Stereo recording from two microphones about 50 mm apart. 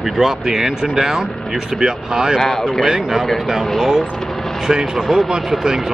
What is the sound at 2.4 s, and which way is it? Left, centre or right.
Speech, centre.